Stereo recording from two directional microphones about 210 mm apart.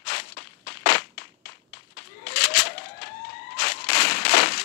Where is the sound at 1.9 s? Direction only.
50° left (ahead or behind).